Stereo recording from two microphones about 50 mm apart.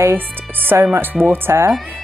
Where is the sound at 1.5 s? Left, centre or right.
Right.